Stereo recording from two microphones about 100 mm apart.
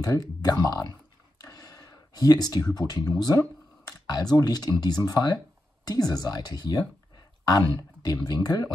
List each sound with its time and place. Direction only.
0.0 s speech: 40° left (ahead or behind)
1.4 s a sound: 35° left (ahead or behind)
2.7 s speech: 40° left (ahead or behind)